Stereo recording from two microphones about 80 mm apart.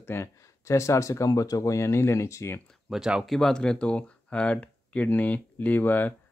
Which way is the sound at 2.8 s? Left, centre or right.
Centre.